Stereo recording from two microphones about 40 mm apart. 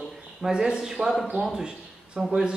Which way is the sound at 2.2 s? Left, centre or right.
Centre.